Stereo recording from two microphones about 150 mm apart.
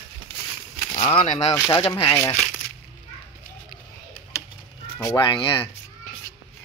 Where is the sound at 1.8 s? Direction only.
35° left (ahead or behind).